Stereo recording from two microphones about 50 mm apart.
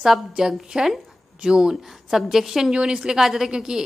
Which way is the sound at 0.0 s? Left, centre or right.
Centre.